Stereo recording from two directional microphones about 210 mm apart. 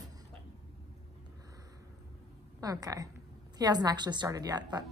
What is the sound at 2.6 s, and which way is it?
A woman's voice, 15° right (ahead or behind).